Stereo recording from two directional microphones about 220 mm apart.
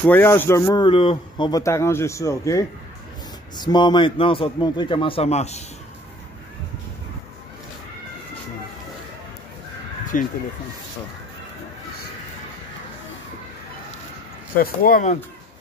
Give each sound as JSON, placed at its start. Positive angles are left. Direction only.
{"t": 0.0, "sound": "a man's voice", "side_deg": 10}
{"t": 10.1, "sound": "speech", "side_deg": 35}
{"t": 14.6, "sound": "speech", "side_deg": 40}